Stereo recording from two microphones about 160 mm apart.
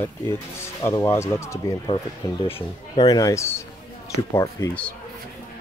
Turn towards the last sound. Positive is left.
turn(degrees=10)  # may be behind; listen again after turning